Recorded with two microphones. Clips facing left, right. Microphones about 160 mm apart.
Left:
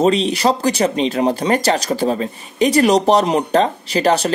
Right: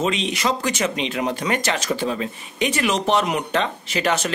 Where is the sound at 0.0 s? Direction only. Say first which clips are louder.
Left 8 dB; 35° left (ahead or behind).